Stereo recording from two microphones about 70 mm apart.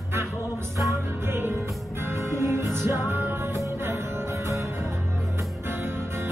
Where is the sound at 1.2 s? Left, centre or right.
Right.